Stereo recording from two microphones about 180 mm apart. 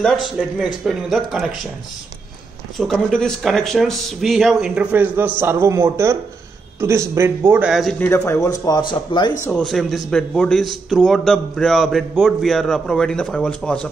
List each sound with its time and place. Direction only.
0.0 s a man's voice: 5° left (ahead or behind)
2.8 s a man's voice: 5° left (ahead or behind)
8.0 s speech: 15° left (ahead or behind)
9.4 s a man's voice: 5° left (ahead or behind)